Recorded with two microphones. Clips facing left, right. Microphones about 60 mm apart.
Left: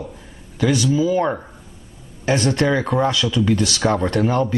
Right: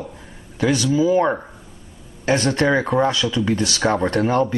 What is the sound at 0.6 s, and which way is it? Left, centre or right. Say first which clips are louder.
Speech: even; right.